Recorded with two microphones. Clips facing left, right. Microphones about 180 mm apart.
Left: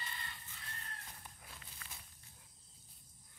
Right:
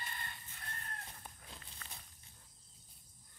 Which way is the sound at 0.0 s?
50° right (ahead or behind).